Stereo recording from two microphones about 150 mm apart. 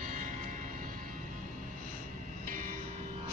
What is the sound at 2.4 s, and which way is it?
Vehicle, 60° right (ahead or behind).